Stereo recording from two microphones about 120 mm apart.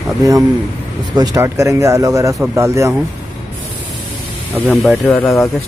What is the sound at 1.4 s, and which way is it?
Speech, 25° right (ahead or behind).